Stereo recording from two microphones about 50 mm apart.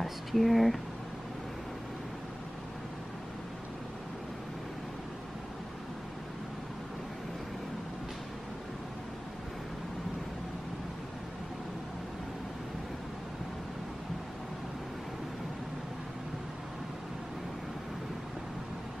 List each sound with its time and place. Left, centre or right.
0.0 s speech: centre